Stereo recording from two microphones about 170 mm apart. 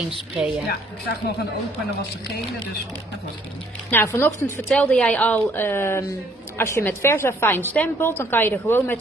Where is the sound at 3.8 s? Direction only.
15° left (ahead or behind).